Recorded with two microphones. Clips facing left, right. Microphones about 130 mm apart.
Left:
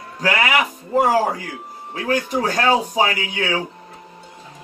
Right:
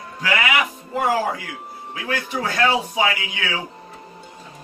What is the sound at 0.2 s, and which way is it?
Speech, 40° left (ahead or behind).